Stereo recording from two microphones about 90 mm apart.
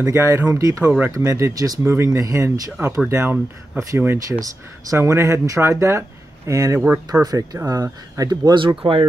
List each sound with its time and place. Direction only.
0.0 s speech: 30° right (ahead or behind)
0.8 s speech: 15° right (ahead or behind)
1.1 s speech: 35° right (ahead or behind)
4.3 s speech: 40° right (ahead or behind)
8.5 s speech: 70° right (ahead or behind)